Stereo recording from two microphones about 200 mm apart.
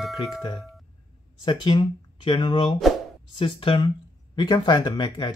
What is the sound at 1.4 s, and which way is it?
Speech, 25° left (ahead or behind).